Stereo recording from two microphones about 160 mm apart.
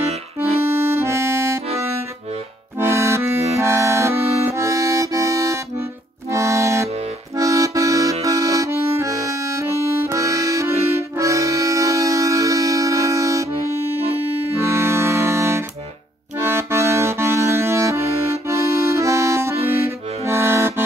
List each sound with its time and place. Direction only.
0.6 s accordion: 15° right (ahead or behind)
2.8 s accordion: 15° right (ahead or behind)
14.0 s accordion: 40° right (ahead or behind)
14.6 s music: 15° right (ahead or behind)
16.3 s accordion: 15° right (ahead or behind)